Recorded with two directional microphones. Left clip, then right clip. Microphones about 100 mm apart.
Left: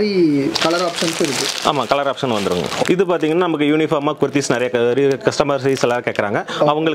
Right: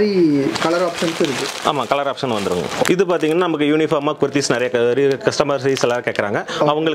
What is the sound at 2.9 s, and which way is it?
Speech, 35° left (ahead or behind).